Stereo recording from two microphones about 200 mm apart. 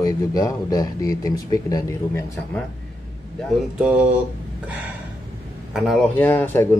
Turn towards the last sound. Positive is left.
turn(degrees=10)  # may be behind; listen again after turning